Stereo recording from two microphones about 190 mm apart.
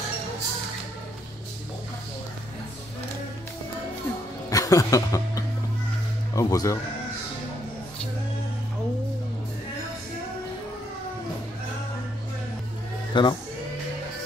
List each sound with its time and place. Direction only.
4.5 s speech: 20° left (ahead or behind)
13.1 s speech: 25° left (ahead or behind)